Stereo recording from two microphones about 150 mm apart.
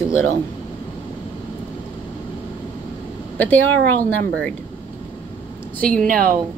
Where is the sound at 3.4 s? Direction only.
10° left (ahead or behind).